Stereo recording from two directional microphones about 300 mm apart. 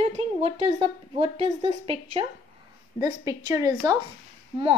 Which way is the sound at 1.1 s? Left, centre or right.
Centre.